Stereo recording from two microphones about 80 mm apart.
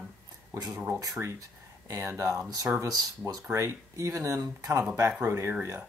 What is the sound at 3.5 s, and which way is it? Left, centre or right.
Speech, right.